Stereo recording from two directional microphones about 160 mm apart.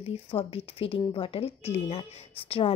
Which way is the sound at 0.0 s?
35° left (ahead or behind).